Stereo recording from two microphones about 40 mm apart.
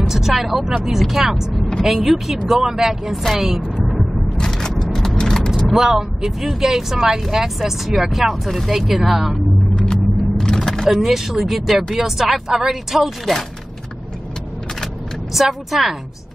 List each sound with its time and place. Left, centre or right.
0.1 s speech: centre
3.8 s vehicle: centre
4.4 s a sound: centre
5.7 s speech: centre
9.8 s a sound: centre
10.9 s speech: centre
13.2 s speech: centre
15.3 s speech: centre